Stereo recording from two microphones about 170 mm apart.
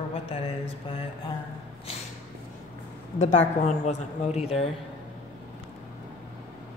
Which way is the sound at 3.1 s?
45° left (ahead or behind).